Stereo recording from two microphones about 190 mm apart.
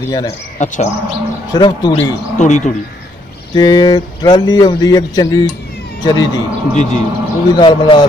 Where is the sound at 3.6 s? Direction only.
20° left (ahead or behind).